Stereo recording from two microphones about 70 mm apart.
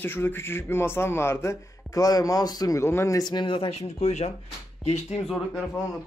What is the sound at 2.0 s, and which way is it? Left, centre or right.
Speech, left.